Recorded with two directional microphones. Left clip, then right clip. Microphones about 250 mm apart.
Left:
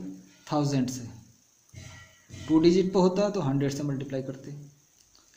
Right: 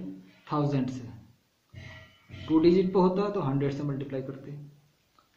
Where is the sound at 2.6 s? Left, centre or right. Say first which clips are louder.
Even; left.